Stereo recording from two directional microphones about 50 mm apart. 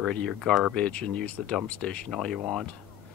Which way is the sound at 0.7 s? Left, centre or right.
Left.